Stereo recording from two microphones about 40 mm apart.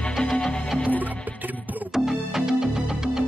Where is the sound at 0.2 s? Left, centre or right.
Left.